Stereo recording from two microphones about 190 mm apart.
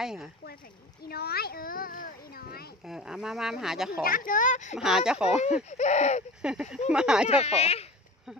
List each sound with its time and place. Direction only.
0.0 s speech: centre (ahead or behind)
1.0 s a child's voice: 55° left (ahead or behind)
2.8 s speech: 5° right (ahead or behind)
4.0 s a child's voice: 45° left (ahead or behind)
4.7 s speech: 5° right (ahead or behind)
5.7 s speech: 35° left (ahead or behind)
6.4 s speech: 5° right (ahead or behind)
7.2 s speech: 35° left (ahead or behind)